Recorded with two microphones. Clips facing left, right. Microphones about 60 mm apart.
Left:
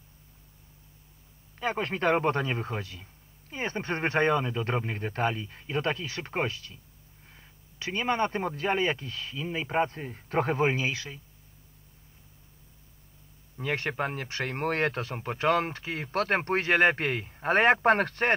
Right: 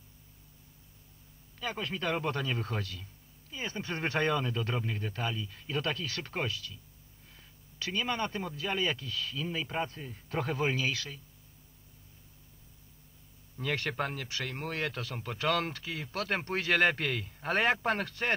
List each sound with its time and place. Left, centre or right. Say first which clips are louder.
1.6 s speech: left 7 dB; left
3.4 s speech: left 6 dB; left
4.6 s speech: left 4 dB; left
13.6 s speech: left 3 dB; left
14.1 s speech: left 5 dB; left